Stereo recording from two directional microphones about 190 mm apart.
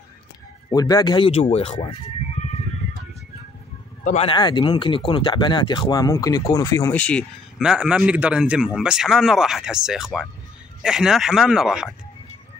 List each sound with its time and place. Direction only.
0.7 s speech: 20° left (ahead or behind)
4.0 s a man's voice: 40° left (ahead or behind)
4.3 s speech: 25° left (ahead or behind)
6.9 s a man's voice: 5° left (ahead or behind)